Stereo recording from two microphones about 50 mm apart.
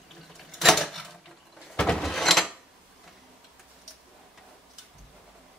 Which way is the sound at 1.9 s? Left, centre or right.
Centre.